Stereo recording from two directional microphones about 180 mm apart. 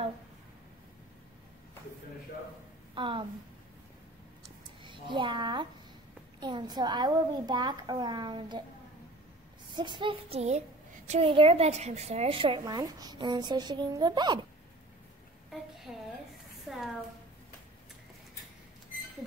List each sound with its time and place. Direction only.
2.9 s a woman's voice: 30° right (ahead or behind)
4.8 s a child's voice: 25° right (ahead or behind)
9.7 s a woman's voice: 25° right (ahead or behind)
15.9 s speech: centre (ahead or behind)